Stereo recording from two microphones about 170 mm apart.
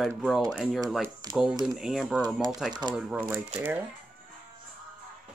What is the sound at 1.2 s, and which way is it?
Speech, 20° right (ahead or behind).